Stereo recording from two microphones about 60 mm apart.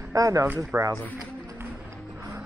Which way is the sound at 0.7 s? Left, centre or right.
Right.